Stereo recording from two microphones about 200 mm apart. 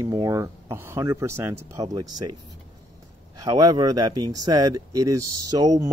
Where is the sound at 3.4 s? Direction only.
20° right (ahead or behind).